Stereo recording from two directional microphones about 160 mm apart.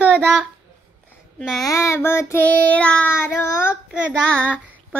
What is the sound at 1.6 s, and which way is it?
Child singing, 20° left (ahead or behind).